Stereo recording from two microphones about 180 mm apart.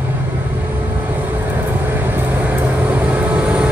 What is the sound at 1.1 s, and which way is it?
Vehicle, 10° right (ahead or behind).